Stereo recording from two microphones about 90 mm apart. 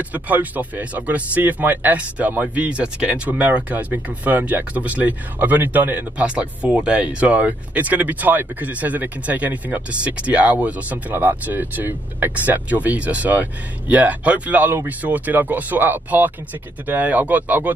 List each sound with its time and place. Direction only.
0.1 s speech: 20° right (ahead or behind)